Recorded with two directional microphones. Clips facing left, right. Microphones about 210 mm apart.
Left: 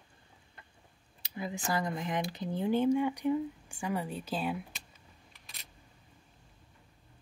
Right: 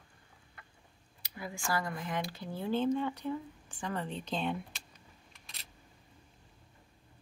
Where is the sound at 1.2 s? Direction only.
20° left (ahead or behind).